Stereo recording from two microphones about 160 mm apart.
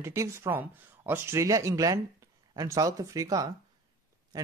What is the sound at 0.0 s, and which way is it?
Speech, 15° right (ahead or behind).